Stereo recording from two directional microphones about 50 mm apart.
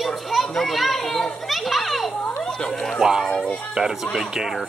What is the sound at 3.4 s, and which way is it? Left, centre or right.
Speech, left.